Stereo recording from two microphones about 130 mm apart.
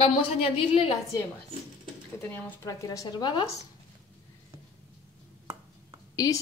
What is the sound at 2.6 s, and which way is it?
Speech, 25° left (ahead or behind).